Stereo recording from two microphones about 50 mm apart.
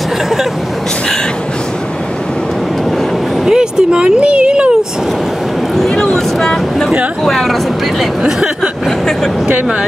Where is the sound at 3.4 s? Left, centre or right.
Centre.